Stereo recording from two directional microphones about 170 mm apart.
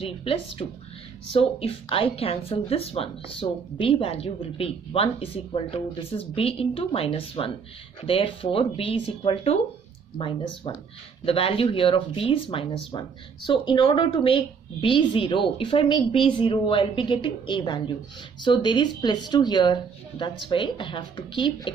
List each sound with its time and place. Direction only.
0.2 s speech: 35° left (ahead or behind)